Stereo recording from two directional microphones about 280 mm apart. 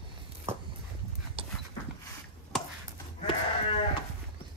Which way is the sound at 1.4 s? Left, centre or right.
Centre.